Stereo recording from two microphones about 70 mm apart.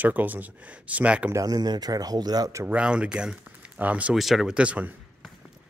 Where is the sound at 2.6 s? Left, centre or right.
Centre.